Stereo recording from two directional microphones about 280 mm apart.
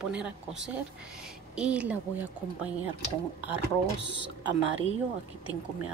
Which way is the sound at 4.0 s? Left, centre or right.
Right.